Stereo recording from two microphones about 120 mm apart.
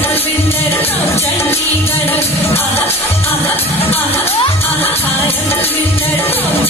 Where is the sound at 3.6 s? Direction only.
55° left (ahead or behind).